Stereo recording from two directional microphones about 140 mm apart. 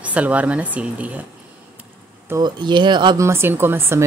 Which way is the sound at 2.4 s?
35° right (ahead or behind).